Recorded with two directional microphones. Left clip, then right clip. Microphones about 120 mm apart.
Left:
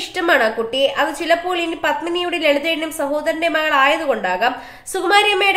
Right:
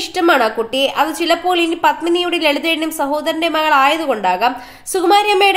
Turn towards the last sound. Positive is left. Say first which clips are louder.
# right 3 dB
turn(degrees=-45)  # may be behind; listen again after turning